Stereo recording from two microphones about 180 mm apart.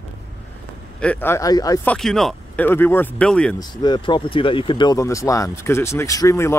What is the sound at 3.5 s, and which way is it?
Speech, 25° left (ahead or behind).